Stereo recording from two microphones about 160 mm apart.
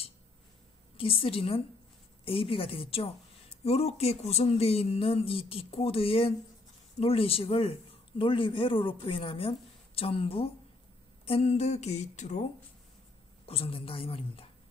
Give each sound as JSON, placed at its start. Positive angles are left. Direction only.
{"t": 0.9, "sound": "speech", "side_deg": 35}
{"t": 11.2, "sound": "a sound", "side_deg": 40}
{"t": 13.5, "sound": "speech", "side_deg": 35}